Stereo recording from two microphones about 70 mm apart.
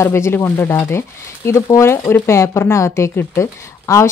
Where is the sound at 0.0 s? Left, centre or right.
Left.